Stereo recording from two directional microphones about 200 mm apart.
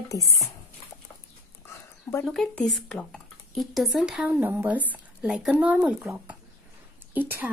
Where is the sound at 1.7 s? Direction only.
15° left (ahead or behind).